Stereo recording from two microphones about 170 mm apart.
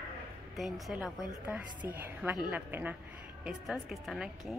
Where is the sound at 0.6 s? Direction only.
Centre (ahead or behind).